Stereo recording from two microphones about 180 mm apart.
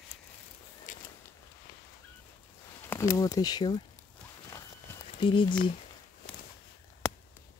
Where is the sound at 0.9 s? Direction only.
45° left (ahead or behind).